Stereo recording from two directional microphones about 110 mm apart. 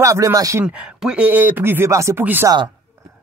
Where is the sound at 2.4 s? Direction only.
45° right (ahead or behind).